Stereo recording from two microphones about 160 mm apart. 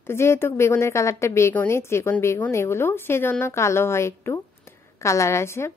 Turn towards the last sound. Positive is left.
turn(degrees=15)  # may be behind; listen again after turning